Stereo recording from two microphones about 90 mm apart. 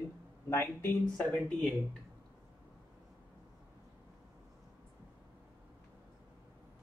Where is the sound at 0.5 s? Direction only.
30° left (ahead or behind).